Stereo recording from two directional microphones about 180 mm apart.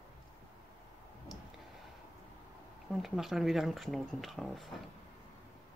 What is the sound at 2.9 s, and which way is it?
Speech, centre (ahead or behind).